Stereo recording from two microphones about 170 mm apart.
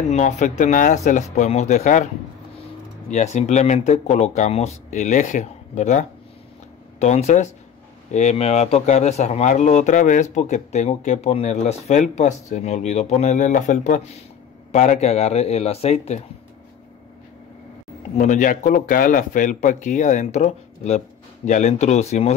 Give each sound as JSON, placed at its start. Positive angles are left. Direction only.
{"t": 0.1, "sound": "speech", "side_deg": 45}
{"t": 3.1, "sound": "speech", "side_deg": 40}
{"t": 18.1, "sound": "speech", "side_deg": 45}